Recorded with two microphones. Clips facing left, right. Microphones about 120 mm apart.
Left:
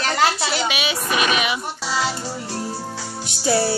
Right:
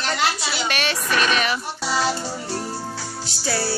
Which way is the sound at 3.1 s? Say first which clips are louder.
Left 7 dB; 20° left (ahead or behind).